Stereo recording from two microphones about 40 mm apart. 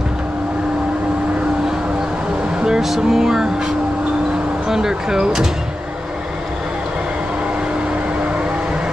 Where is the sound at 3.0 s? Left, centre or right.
Centre.